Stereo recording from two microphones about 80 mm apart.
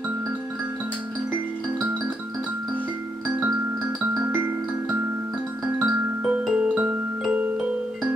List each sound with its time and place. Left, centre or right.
4.0 s music: centre